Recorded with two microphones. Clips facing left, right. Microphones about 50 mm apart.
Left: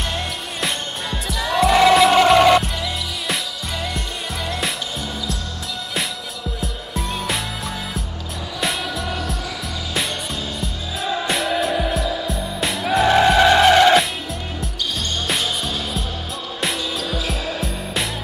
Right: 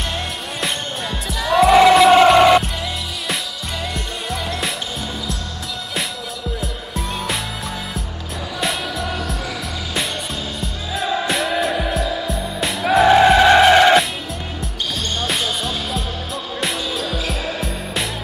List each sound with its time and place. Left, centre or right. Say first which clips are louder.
0.1 s music: right 1 dB; centre
4.5 s music: left 2 dB; centre
6.6 s music: even; centre
8.5 s music: right 1 dB; centre
10.6 s music: right 2 dB; centre
15.2 s music: right 1 dB; centre